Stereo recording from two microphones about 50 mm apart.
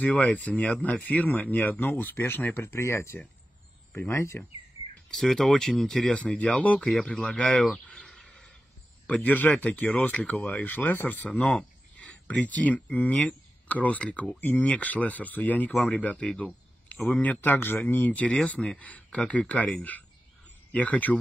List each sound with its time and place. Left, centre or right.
0.0 s speech: left
5.1 s speech: centre
6.6 s speech: left
9.2 s speech: left
11.4 s a sound: centre
12.1 s speech: left
16.3 s a sound: left
17.1 s speech: left
17.4 s speech: left
17.7 s speech: left